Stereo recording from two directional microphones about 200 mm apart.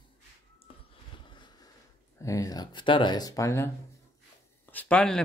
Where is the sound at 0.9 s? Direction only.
25° left (ahead or behind).